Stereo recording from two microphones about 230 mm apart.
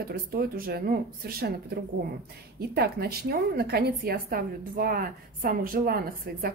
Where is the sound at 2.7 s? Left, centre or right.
Right.